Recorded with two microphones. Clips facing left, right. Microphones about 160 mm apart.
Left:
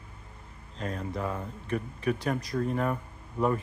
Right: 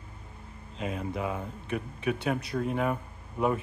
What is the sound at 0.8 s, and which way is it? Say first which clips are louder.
Speech: right 1 dB; 5° right (ahead or behind).